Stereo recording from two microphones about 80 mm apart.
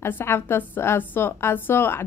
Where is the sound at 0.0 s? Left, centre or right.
Left.